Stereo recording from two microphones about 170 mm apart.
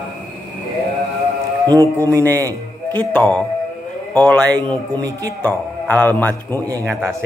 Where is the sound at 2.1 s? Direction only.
20° right (ahead or behind).